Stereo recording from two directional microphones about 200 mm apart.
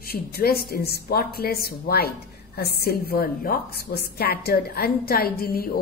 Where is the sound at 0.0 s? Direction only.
50° left (ahead or behind).